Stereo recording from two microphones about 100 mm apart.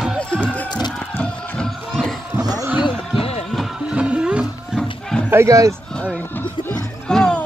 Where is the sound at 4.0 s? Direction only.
10° right (ahead or behind).